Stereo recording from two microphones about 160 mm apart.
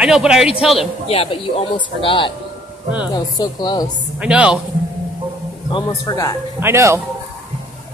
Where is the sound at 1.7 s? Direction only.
30° left (ahead or behind).